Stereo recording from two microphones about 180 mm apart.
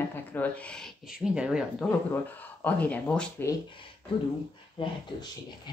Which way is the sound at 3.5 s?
25° left (ahead or behind).